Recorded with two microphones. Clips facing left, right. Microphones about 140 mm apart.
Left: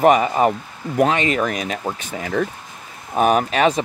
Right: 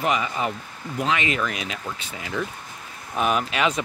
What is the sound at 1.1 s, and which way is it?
Speech, 40° left (ahead or behind).